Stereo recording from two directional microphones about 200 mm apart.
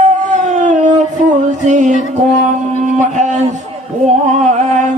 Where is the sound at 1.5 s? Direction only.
35° right (ahead or behind).